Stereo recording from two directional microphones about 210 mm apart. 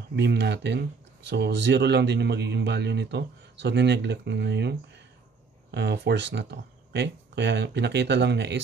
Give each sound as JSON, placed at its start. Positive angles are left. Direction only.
{"t": 0.1, "sound": "a man's voice", "side_deg": -55}